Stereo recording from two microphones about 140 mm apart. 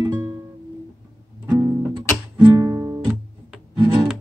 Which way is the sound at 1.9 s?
35° right (ahead or behind).